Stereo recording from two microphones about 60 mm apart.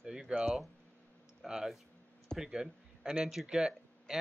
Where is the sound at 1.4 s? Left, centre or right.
Centre.